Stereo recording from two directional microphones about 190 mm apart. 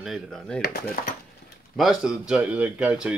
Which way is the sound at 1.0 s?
50° left (ahead or behind).